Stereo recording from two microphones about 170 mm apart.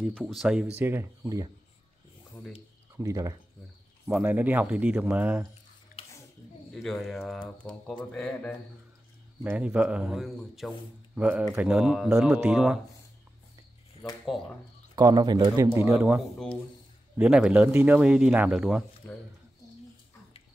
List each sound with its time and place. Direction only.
0.1 s speech: centre (ahead or behind); by 1.5 s 15° right (ahead or behind)
3.0 s speech: 20° right (ahead or behind)
6.7 s speech: centre (ahead or behind)
9.4 s speech: 10° right (ahead or behind)
14.2 s speech: centre (ahead or behind)
15.0 s speech: 20° right (ahead or behind)
17.2 s speech: 5° right (ahead or behind)